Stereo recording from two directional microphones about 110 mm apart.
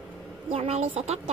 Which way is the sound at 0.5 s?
70° right (ahead or behind).